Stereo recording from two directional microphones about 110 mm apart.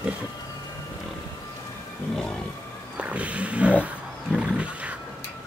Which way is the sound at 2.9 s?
10° right (ahead or behind).